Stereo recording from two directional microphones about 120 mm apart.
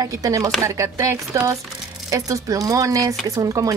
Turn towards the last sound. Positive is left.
turn(degrees=-25)  # may be behind; listen again after turning